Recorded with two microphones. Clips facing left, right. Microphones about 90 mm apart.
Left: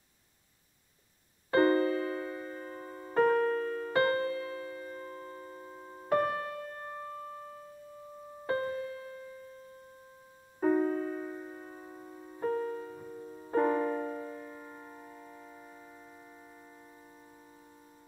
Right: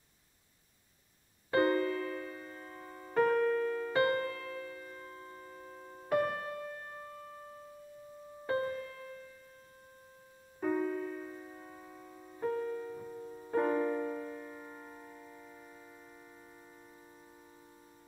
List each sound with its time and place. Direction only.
1.5 s music: 40° left (ahead or behind); by 6.0 s 20° left (ahead or behind)
6.0 s music: 35° left (ahead or behind)
8.5 s music: 35° left (ahead or behind)
10.6 s music: 40° left (ahead or behind)
13.0 s music: 15° left (ahead or behind)
13.5 s music: 30° left (ahead or behind); by 16.0 s 10° left (ahead or behind)